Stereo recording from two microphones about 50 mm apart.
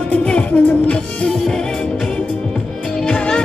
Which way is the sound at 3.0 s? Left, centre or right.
Centre.